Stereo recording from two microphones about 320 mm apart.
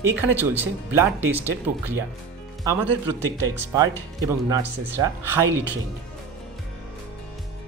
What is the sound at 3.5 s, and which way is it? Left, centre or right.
Speech, centre.